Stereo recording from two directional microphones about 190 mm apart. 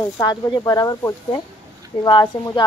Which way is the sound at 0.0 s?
20° left (ahead or behind).